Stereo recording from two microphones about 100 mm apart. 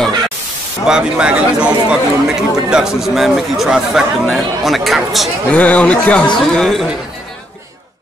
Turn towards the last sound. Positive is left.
turn(degrees=5)  # may be behind; listen again after turning